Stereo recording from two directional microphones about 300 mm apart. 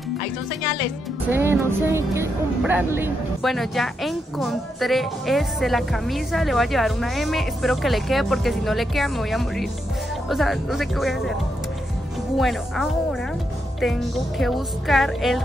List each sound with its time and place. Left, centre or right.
1.3 s speech: centre
12.4 s speech: centre